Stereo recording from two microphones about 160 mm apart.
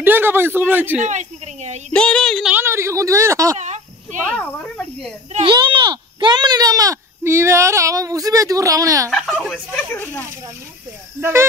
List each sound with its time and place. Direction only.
0.0 s a man's voice: 15° right (ahead or behind)
1.0 s a sound: 45° right (ahead or behind)
1.9 s female singing: 5° left (ahead or behind)
2.5 s a sound: 15° right (ahead or behind)
3.5 s insect: 45° right (ahead or behind)
5.4 s speech: 30° right (ahead or behind)
9.1 s speech: centre (ahead or behind)
11.1 s speech: 15° right (ahead or behind)